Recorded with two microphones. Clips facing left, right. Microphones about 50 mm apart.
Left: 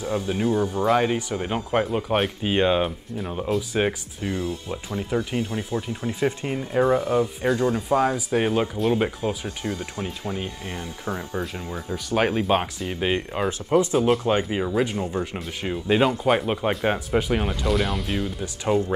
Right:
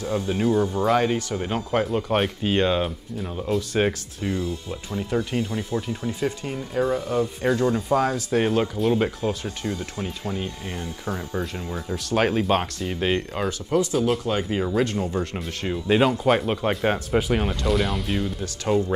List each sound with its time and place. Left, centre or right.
0.3 s speech: centre
4.3 s speech: left
4.8 s speech: centre
7.4 s speech: centre
13.7 s speech: centre
14.5 s speech: centre
14.8 s speech: centre